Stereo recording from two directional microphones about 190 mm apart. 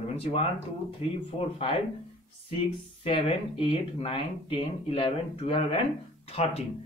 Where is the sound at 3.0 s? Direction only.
30° left (ahead or behind).